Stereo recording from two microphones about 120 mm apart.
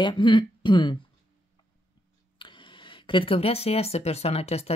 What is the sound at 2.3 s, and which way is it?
Speech, 45° left (ahead or behind).